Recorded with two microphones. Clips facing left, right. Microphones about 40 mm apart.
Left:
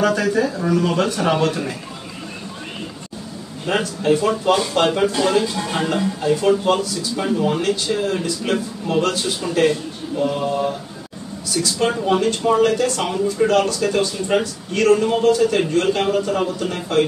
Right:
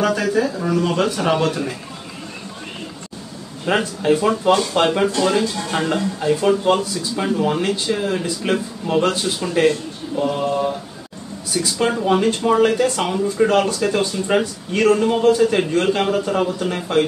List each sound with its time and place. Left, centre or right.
0.0 s speech: centre
3.6 s a man's voice: centre
6.2 s a man's voice: centre
11.5 s a man's voice: centre